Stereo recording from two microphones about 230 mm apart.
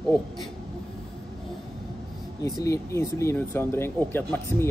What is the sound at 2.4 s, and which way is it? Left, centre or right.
Speech, centre.